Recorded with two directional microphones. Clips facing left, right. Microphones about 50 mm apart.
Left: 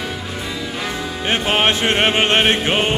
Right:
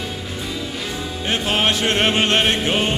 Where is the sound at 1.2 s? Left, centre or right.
Left.